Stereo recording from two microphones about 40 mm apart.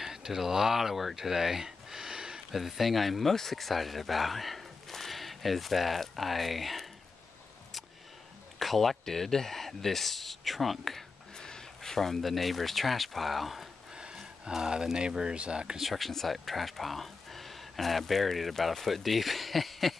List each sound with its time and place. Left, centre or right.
0.0 s speech: centre
2.5 s speech: centre
8.5 s speech: centre
11.3 s speech: centre
14.5 s speech: centre
15.8 s speech: centre